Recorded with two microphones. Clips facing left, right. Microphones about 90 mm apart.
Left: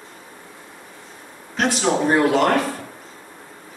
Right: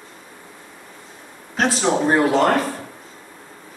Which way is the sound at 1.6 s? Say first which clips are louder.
Right 1 dB; 30° right (ahead or behind).